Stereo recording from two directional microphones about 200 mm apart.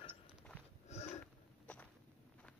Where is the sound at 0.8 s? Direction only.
35° left (ahead or behind).